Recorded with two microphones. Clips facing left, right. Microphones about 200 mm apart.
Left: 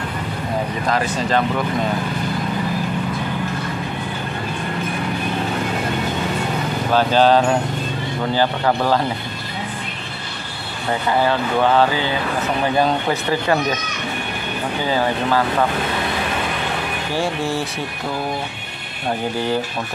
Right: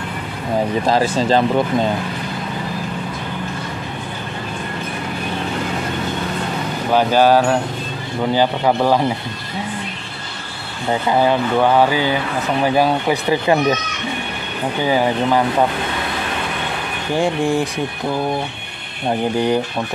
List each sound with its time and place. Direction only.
0.8 s speech: 30° right (ahead or behind)
6.9 s speech: 10° right (ahead or behind)
11.1 s speech: 15° right (ahead or behind)
14.9 s speech: 15° right (ahead or behind)
17.1 s speech: 15° right (ahead or behind)
19.3 s speech: 20° right (ahead or behind)